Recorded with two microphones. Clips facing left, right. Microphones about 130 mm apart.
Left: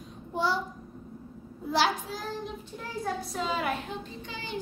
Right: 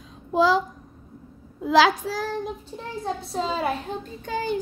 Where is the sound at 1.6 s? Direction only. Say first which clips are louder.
Right 8 dB; 90° right.